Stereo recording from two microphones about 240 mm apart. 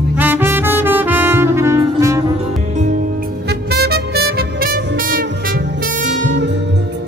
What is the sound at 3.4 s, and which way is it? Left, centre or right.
Music, right.